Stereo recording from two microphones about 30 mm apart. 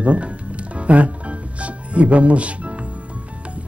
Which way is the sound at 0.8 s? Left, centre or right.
Right.